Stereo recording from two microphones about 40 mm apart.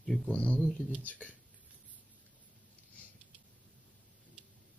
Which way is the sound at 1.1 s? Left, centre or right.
Left.